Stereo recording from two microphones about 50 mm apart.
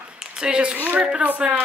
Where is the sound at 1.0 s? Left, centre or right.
Right.